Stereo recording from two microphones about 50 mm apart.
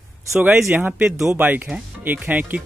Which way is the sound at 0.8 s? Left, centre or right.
Right.